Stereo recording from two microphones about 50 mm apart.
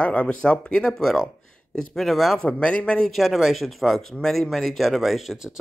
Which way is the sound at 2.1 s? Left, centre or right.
Centre.